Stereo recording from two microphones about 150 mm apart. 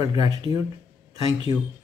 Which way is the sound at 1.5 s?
25° right (ahead or behind).